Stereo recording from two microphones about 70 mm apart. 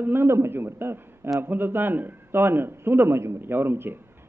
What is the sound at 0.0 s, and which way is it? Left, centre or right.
A man's voice, right.